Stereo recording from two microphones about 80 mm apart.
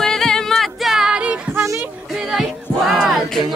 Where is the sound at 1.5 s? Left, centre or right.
Right.